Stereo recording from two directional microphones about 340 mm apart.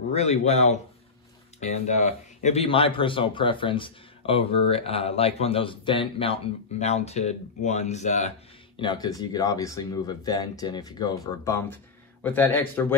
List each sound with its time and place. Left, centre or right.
0.1 s speech: centre